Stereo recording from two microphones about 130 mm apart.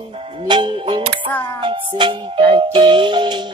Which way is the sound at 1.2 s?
15° left (ahead or behind).